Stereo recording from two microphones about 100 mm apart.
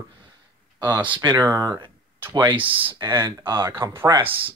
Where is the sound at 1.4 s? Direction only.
35° right (ahead or behind).